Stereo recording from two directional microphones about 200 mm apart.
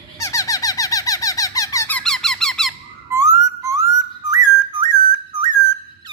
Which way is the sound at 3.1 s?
15° right (ahead or behind).